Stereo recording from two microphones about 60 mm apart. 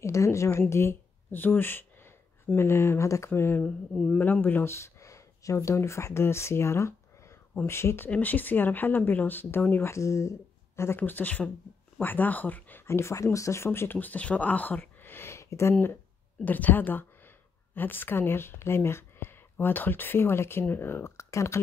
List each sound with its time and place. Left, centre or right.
0.0 s a woman's voice: left
1.3 s speech: left
3.3 s speech: left
3.9 s a man's voice: centre
4.2 s speech: left
4.6 s speech: left
8.1 s speech: left
9.9 s speech: left
11.0 s speech: left
12.8 s speech: left
13.1 s speech: left
13.7 s speech: left
16.4 s speech: left